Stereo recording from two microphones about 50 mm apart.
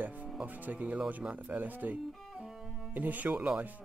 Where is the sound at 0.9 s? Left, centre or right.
Right.